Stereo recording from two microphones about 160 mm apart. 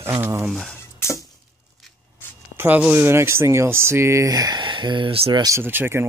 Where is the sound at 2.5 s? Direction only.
10° right (ahead or behind); by 5.4 s 35° right (ahead or behind).